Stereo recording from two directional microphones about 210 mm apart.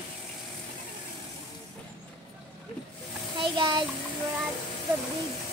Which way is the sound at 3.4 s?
20° right (ahead or behind).